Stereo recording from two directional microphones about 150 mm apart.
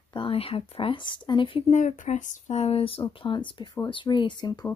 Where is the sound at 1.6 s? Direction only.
50° left (ahead or behind).